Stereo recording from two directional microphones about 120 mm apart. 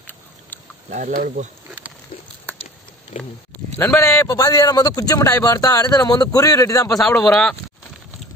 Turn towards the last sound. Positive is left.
turn(degrees=5)  # may be behind; listen again after turning